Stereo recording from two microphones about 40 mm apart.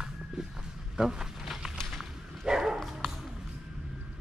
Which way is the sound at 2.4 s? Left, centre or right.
Centre.